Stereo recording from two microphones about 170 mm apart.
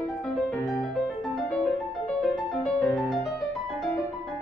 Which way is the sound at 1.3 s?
5° left (ahead or behind).